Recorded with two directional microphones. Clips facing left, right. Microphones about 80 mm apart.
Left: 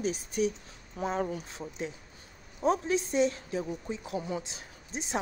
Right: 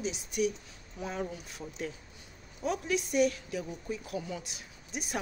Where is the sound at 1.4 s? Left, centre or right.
Left.